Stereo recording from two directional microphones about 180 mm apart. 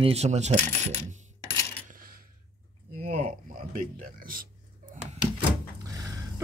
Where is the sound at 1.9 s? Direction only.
55° right (ahead or behind).